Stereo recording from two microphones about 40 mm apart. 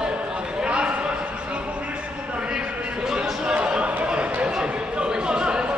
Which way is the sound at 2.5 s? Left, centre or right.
Centre.